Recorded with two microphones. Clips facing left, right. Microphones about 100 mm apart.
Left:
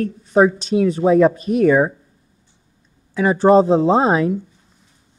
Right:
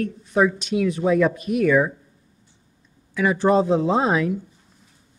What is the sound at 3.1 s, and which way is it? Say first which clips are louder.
A man's voice: left 6 dB; 35° left (ahead or behind).